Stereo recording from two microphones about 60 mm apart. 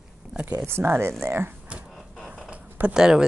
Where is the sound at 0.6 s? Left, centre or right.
Right.